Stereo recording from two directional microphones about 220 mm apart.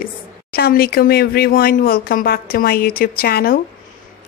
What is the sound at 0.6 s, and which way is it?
A woman's voice, 45° left (ahead or behind).